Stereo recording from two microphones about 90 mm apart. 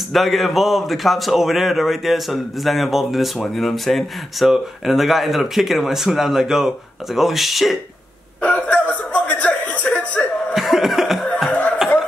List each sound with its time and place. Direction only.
0.1 s speech: centre (ahead or behind)
8.4 s chuckle: 15° left (ahead or behind)
10.5 s cough: 5° right (ahead or behind)
11.4 s chuckle: 20° left (ahead or behind)